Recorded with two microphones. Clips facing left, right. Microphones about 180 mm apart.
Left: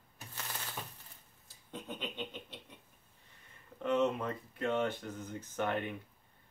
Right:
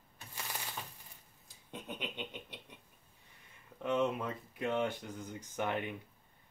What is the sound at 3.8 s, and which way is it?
Speech, 10° right (ahead or behind).